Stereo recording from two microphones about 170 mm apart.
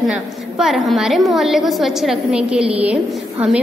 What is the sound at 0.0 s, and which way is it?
A woman's voice, centre (ahead or behind).